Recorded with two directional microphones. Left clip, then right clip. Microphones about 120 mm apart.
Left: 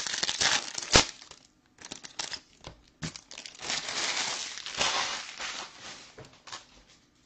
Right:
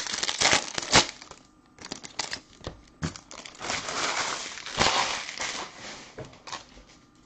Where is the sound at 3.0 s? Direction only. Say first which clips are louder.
Right 3 dB; 25° left (ahead or behind).